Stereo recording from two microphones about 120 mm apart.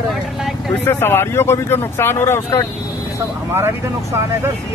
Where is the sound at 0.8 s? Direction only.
20° left (ahead or behind).